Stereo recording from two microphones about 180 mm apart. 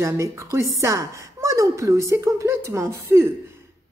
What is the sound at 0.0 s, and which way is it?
A woman's voice, 15° right (ahead or behind).